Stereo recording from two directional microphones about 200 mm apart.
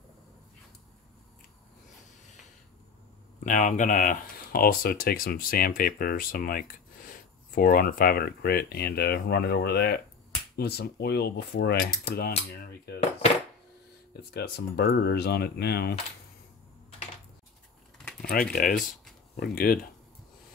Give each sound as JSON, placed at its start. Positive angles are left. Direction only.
{"t": 3.4, "sound": "speech", "side_deg": 40}
{"t": 14.3, "sound": "speech", "side_deg": 50}
{"t": 18.3, "sound": "speech", "side_deg": 45}